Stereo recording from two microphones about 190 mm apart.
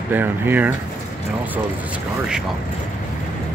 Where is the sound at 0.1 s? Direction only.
10° right (ahead or behind).